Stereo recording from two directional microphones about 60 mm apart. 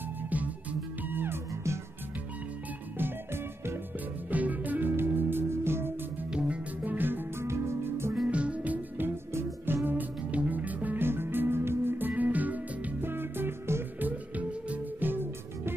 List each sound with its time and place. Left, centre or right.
1.0 s music: right
4.3 s music: right
6.3 s music: centre; by 8.1 s right
8.3 s music: right
8.9 s music: right
9.8 s music: right
11.1 s music: right
12.1 s music: right
13.9 s music: right